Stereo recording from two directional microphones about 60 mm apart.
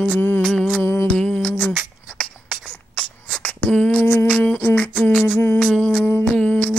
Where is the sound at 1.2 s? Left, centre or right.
Centre.